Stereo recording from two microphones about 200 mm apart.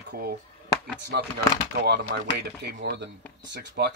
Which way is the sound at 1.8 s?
55° right (ahead or behind).